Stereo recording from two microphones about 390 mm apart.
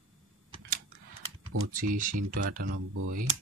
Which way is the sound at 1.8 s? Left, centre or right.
Right.